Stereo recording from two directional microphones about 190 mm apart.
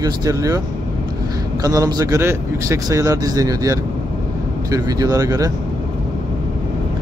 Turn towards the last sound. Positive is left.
turn(degrees=-15)  # may be behind; listen again after turning